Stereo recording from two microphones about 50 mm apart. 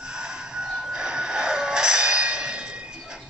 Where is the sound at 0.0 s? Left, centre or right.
Centre.